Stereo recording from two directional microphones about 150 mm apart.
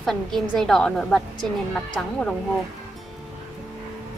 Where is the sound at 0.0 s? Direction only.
Centre (ahead or behind).